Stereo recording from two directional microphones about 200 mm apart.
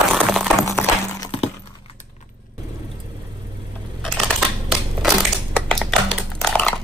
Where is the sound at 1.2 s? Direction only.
30° left (ahead or behind).